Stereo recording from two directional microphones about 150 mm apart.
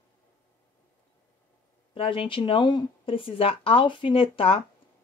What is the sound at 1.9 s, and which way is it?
Speech, 35° left (ahead or behind).